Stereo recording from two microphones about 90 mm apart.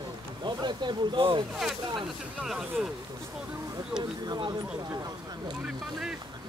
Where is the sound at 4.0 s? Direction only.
55° right (ahead or behind).